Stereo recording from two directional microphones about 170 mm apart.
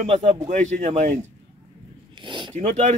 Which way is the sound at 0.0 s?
40° right (ahead or behind).